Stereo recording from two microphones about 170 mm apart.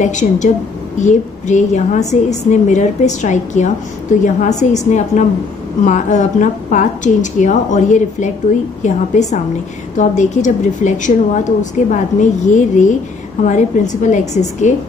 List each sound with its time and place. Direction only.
0.0 s a woman's voice: 45° left (ahead or behind)
5.9 s a woman's voice: 45° left (ahead or behind)